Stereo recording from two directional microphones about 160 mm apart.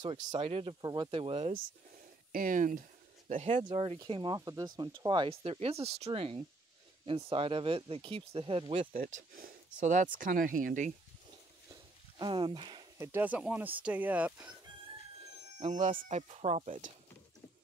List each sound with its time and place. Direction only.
0.0 s speech: 30° right (ahead or behind)
0.7 s speech: 25° right (ahead or behind)
1.1 s speech: 35° right (ahead or behind)
2.3 s speech: 60° right (ahead or behind)
3.3 s speech: 45° right (ahead or behind)
8.9 s speech: 65° right (ahead or behind)
12.2 s speech: 30° right (ahead or behind)
12.9 s speech: 15° right (ahead or behind)
15.6 s speech: 45° right (ahead or behind)